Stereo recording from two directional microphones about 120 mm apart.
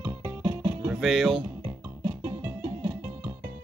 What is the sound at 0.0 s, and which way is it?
Music, 20° right (ahead or behind).